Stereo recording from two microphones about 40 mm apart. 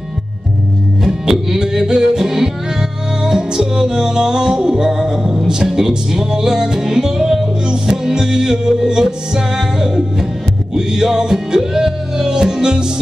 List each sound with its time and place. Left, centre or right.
1.0 s music: centre